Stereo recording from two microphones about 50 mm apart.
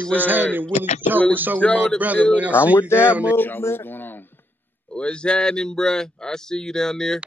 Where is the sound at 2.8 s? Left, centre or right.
Left.